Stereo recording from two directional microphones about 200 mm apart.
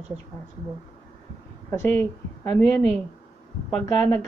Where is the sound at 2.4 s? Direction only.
10° left (ahead or behind).